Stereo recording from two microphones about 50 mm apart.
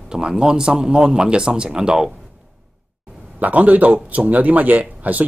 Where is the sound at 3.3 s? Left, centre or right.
Right.